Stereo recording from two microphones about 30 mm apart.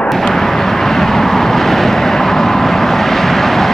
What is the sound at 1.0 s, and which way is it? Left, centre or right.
Vehicle, centre.